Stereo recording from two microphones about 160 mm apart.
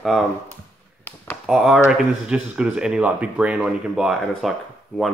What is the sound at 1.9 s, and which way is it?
Speech, 5° right (ahead or behind).